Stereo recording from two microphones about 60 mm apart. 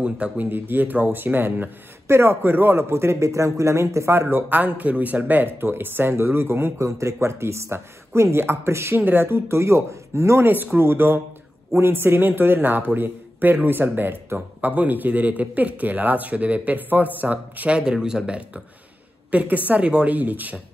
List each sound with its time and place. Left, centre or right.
0.4 s speech: right
4.5 s speech: right
9.0 s speech: right
10.4 s a man's voice: right